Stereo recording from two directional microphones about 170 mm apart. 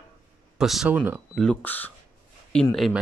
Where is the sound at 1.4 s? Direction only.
10° left (ahead or behind).